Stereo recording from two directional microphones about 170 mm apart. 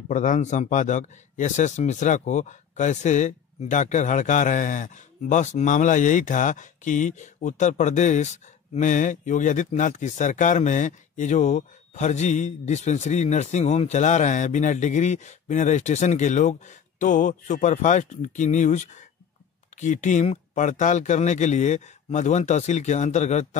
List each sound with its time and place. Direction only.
0.1 s speech: 50° left (ahead or behind)